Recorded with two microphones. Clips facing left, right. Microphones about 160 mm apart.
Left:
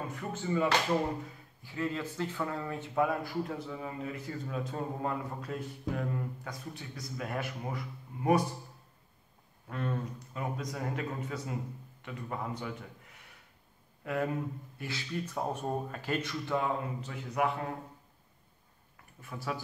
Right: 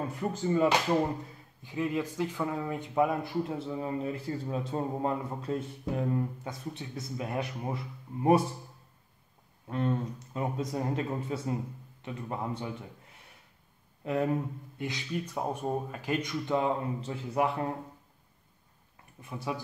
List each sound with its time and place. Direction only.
0.2 s speech: 35° right (ahead or behind)
1.6 s speech: 15° right (ahead or behind)
9.7 s speech: 20° right (ahead or behind)
14.0 s speech: 20° right (ahead or behind)
19.2 s speech: 20° right (ahead or behind)